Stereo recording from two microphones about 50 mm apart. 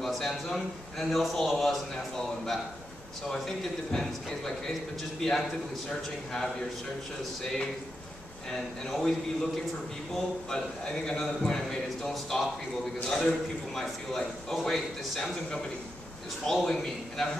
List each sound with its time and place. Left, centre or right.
0.0 s a man's voice: centre
8.5 s a man's voice: centre
10.5 s a man's voice: centre